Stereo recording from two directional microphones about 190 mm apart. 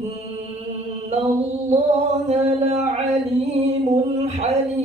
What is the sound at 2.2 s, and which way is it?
Chant, 35° right (ahead or behind).